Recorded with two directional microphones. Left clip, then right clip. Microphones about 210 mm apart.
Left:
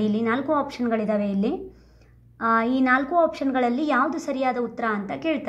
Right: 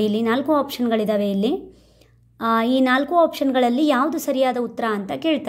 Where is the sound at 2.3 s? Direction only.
45° right (ahead or behind).